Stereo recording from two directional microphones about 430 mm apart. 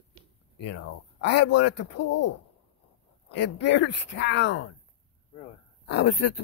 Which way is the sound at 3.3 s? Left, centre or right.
Left.